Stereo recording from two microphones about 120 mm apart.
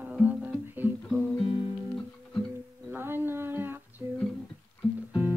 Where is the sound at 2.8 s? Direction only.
20° right (ahead or behind).